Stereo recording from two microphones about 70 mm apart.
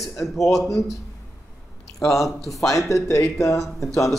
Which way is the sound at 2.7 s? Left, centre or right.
Left.